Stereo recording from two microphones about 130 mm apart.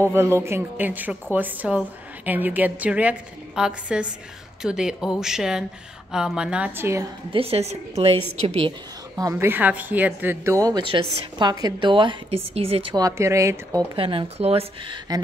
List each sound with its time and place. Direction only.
0.0 s a woman's voice: 20° right (ahead or behind)
7.3 s speech: 50° right (ahead or behind)
9.1 s a woman's voice: 25° right (ahead or behind)
10.8 s a woman's voice: 40° right (ahead or behind)
12.9 s a woman's voice: 25° right (ahead or behind)
13.9 s speech: 45° right (ahead or behind)